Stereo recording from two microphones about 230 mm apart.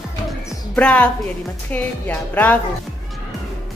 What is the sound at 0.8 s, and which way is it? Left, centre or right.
A woman's voice, centre.